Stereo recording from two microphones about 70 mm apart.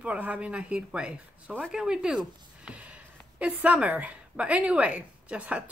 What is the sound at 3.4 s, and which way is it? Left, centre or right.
Speech, centre.